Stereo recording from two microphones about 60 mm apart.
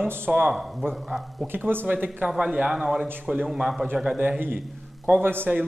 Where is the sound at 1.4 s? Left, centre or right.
Right.